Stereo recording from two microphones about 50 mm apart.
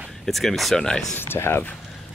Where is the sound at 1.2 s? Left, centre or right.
Left.